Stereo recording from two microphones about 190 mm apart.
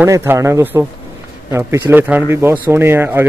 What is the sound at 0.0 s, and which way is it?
A man's voice, 15° right (ahead or behind).